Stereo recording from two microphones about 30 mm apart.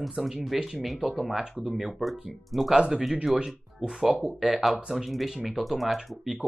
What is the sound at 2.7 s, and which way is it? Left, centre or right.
Speech, right.